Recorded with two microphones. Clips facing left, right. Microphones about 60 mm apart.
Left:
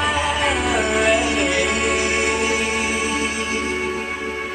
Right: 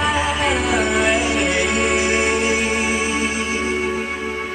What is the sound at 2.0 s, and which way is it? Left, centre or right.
Music, centre.